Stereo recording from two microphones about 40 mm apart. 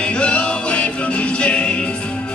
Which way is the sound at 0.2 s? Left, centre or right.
Left.